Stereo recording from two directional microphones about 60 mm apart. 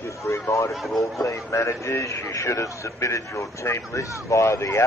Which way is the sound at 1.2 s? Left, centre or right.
Left.